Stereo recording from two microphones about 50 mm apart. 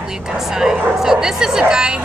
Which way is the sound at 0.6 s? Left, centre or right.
Centre.